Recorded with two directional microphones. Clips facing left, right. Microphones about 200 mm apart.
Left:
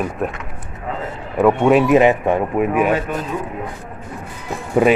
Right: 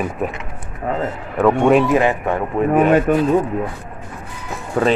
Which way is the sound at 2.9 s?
45° right (ahead or behind).